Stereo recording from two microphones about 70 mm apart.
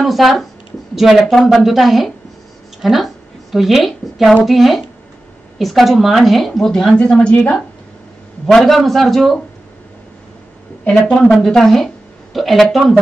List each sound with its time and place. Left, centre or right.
0.0 s a woman's voice: centre
8.5 s speech: centre
10.8 s a woman's voice: centre